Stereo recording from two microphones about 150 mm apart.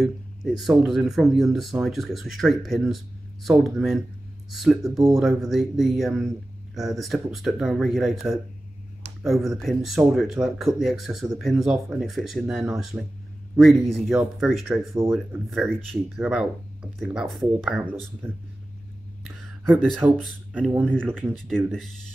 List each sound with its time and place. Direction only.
0.0 s speech: 5° right (ahead or behind)
4.8 s speech: 25° right (ahead or behind)
5.2 s speech: centre (ahead or behind)
15.0 s speech: 15° right (ahead or behind)
15.5 s speech: centre (ahead or behind)
20.0 s speech: 15° right (ahead or behind)
20.9 s speech: 5° left (ahead or behind)